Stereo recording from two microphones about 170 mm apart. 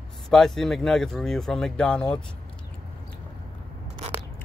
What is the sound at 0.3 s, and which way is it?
Speech, centre (ahead or behind).